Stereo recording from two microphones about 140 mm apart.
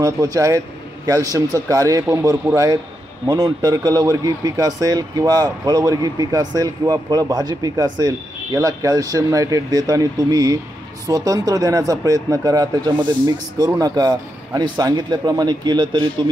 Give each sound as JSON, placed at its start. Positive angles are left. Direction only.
{"t": 0.0, "sound": "speech", "side_deg": -25}